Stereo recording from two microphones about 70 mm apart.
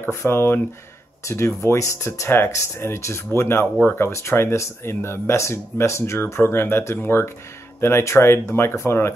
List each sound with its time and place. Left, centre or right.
0.1 s speech: left